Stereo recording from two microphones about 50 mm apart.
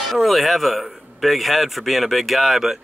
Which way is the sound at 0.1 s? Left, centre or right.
Centre.